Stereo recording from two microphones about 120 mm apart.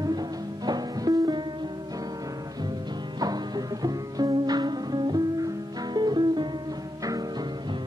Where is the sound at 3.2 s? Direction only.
35° right (ahead or behind).